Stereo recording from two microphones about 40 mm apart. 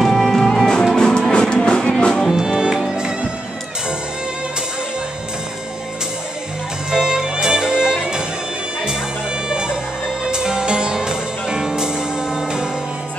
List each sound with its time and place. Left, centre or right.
0.0 s music: centre
2.2 s music: centre
6.9 s music: centre
9.5 s music: centre